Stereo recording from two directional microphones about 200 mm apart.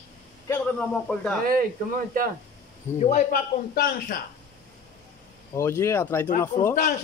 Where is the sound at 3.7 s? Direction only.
45° left (ahead or behind).